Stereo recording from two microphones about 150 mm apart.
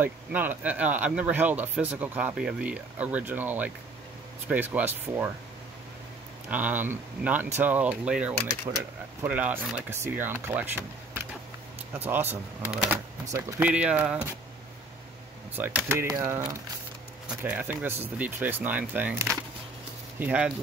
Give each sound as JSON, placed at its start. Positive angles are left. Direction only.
{"t": 0.0, "sound": "speech", "side_deg": -10}
{"t": 6.5, "sound": "speech", "side_deg": -10}
{"t": 8.7, "sound": "speech", "side_deg": -35}
{"t": 9.2, "sound": "speech", "side_deg": -10}
{"t": 15.5, "sound": "speech", "side_deg": -10}